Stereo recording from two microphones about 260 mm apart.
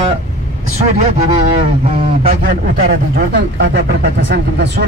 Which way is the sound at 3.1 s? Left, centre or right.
Right.